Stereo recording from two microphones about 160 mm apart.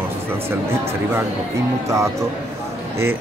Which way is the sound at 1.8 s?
20° right (ahead or behind).